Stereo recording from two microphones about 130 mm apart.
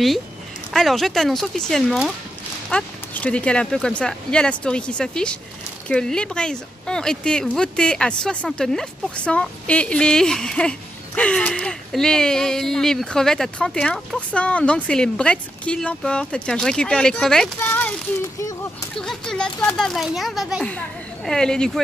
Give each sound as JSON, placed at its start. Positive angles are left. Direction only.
{"t": 0.7, "sound": "speech", "side_deg": 0}
{"t": 18.9, "sound": "speech", "side_deg": 5}